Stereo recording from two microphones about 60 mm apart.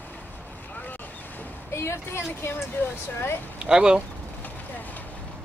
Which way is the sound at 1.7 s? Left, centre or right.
Left.